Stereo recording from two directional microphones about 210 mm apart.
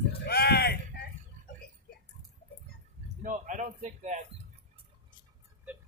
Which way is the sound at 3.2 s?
35° right (ahead or behind).